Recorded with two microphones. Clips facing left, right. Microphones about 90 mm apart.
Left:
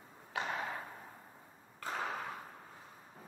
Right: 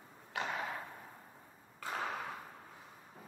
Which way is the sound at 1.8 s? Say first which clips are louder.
Even; centre (ahead or behind).